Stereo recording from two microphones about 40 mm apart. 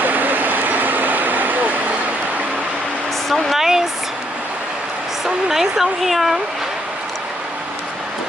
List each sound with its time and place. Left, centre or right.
0.0 s vehicle: right
3.5 s speech: centre
5.2 s speech: centre